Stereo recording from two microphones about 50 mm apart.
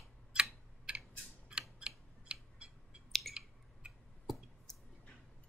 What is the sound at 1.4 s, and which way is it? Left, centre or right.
Mechanisms, centre.